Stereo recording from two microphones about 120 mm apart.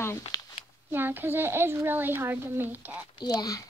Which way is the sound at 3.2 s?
30° left (ahead or behind).